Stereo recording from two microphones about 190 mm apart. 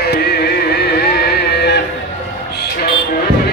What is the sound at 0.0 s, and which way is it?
Music, 55° left (ahead or behind).